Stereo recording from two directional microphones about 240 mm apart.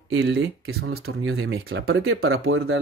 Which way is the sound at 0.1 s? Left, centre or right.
Right.